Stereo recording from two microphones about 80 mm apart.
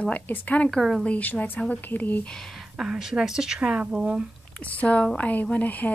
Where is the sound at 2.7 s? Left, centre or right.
Centre.